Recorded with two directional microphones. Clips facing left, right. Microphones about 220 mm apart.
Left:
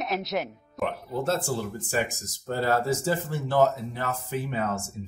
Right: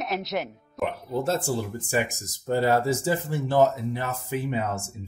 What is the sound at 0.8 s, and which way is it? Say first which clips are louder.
Speech: right 1 dB; 15° right (ahead or behind).